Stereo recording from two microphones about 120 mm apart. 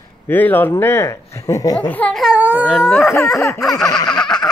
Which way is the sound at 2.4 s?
10° right (ahead or behind).